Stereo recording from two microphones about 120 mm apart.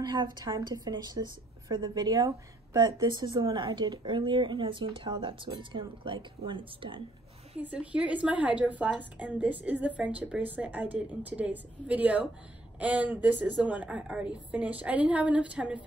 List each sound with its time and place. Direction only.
0.0 s a woman's voice: 35° right (ahead or behind)
7.6 s a woman's voice: 10° right (ahead or behind)